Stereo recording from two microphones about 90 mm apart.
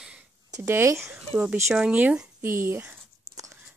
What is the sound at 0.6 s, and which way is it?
Speech, 25° right (ahead or behind).